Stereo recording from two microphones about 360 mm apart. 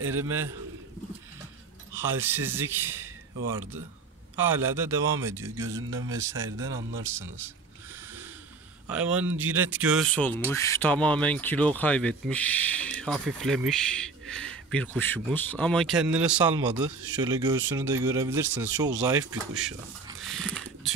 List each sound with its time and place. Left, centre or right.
0.0 s a man's voice: right
2.2 s speech: centre
4.4 s speech: centre
8.8 s speech: centre
20.2 s a sound: centre